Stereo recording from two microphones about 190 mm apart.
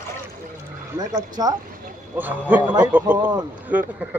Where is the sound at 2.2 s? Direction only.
10° right (ahead or behind).